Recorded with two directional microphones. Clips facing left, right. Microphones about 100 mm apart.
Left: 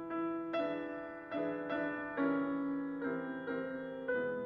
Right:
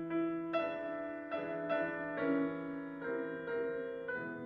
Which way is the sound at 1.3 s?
5° left (ahead or behind).